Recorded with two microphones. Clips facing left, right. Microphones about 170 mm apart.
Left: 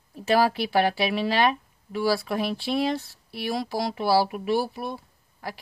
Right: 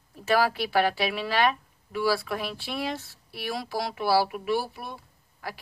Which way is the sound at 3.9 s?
25° left (ahead or behind).